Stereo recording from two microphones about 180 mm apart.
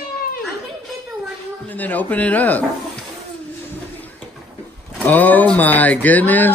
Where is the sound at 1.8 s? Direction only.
10° left (ahead or behind).